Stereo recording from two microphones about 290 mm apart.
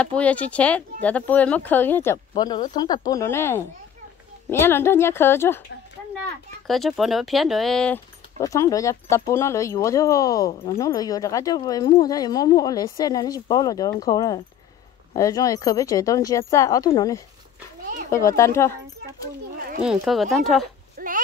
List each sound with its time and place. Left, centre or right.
0.0 s speech: centre
6.7 s speech: centre
19.8 s speech: centre
21.0 s a sound: right